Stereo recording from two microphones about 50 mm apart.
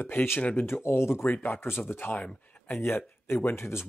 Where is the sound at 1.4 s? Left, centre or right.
Left.